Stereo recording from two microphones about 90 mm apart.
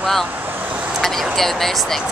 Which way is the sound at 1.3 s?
5° left (ahead or behind).